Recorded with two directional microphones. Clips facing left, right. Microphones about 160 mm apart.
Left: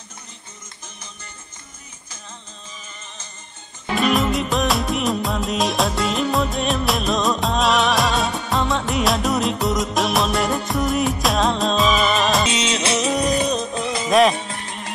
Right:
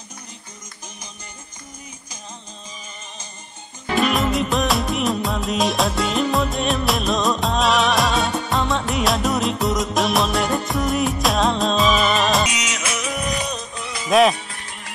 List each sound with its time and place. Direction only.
3.9 s music: centre (ahead or behind)
12.4 s music: 30° left (ahead or behind)
14.0 s music: centre (ahead or behind)
14.3 s music: 25° left (ahead or behind)